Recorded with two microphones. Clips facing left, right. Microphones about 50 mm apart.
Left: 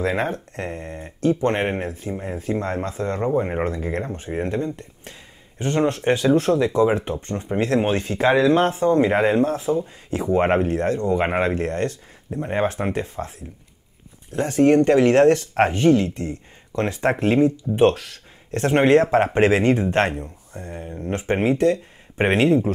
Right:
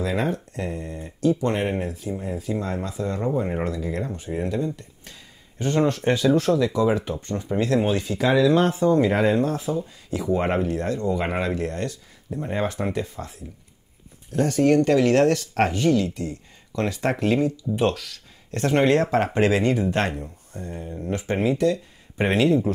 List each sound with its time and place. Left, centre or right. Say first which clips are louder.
0.0 s speech: left 2 dB; left
3.3 s speech: left 3 dB; left
14.3 s speech: left 2 dB; left